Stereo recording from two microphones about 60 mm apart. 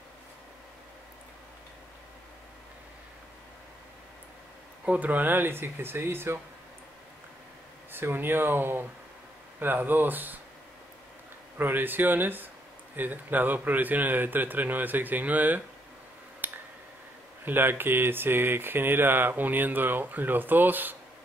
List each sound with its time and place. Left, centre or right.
4.8 s speech: right
7.9 s speech: right
11.5 s speech: right
16.4 s a sound: right
17.5 s speech: right